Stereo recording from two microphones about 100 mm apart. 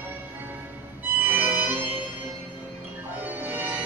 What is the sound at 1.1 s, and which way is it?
Music, 15° right (ahead or behind).